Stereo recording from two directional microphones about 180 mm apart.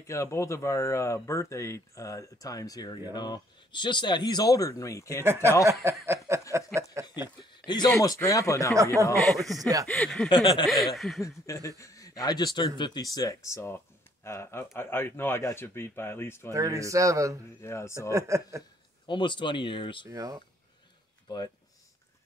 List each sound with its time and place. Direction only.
0.0 s speech: 15° left (ahead or behind)
5.2 s a man's voice: 15° right (ahead or behind)
7.5 s a sound: 25° left (ahead or behind)
7.9 s speech: 15° left (ahead or behind)
9.6 s speech: 20° right (ahead or behind)
9.8 s speech: 5° left (ahead or behind)
10.3 s speech: 25° left (ahead or behind)
11.0 s speech: centre (ahead or behind)
11.2 s speech: 20° left (ahead or behind)
16.5 s a man's voice: 20° right (ahead or behind)
17.6 s speech: 15° left (ahead or behind)
18.1 s a man's voice: 15° right (ahead or behind)
19.0 s speech: 25° left (ahead or behind)
20.1 s speech: 20° right (ahead or behind)